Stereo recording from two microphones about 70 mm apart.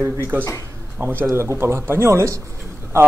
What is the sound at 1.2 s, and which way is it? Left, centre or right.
Speech, right.